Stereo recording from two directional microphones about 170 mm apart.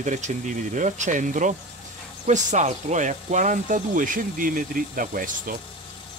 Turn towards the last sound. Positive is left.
turn(degrees=-55)  # may be behind; listen again after turning